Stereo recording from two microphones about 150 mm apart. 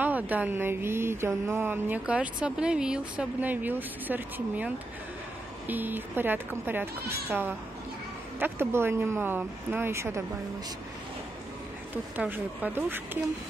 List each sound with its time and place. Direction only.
0.0 s mantra: 10° right (ahead or behind)
11.9 s mantra: 10° right (ahead or behind)